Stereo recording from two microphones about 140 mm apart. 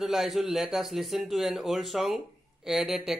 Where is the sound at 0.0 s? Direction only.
Centre (ahead or behind).